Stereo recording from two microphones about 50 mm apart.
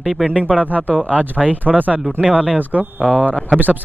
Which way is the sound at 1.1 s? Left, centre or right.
Left.